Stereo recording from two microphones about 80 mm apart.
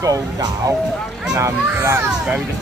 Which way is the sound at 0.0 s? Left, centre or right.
Right.